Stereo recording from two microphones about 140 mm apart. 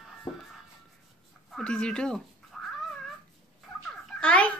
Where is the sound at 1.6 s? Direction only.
5° left (ahead or behind).